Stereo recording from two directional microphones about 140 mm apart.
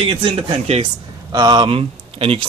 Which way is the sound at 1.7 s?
40° right (ahead or behind).